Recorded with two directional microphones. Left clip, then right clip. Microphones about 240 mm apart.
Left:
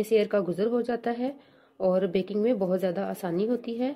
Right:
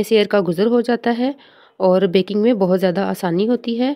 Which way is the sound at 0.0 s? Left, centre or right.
Right.